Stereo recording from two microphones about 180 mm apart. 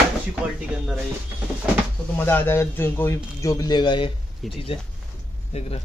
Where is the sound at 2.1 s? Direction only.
10° left (ahead or behind).